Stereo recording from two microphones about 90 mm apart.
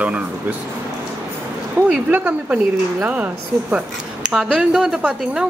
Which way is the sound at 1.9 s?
20° right (ahead or behind).